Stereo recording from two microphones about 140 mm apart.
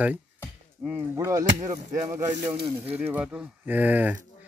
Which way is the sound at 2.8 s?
10° right (ahead or behind).